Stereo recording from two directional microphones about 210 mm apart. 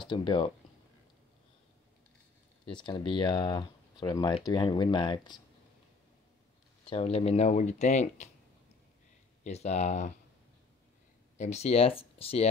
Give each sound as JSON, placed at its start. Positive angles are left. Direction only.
{"t": 0.0, "sound": "speech", "side_deg": 25}
{"t": 2.6, "sound": "speech", "side_deg": 20}
{"t": 6.9, "sound": "speech", "side_deg": 25}
{"t": 9.4, "sound": "speech", "side_deg": 30}
{"t": 11.3, "sound": "speech", "side_deg": 30}